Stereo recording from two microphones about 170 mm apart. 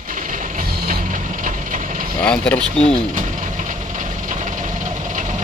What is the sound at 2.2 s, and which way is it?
Speech, 5° left (ahead or behind).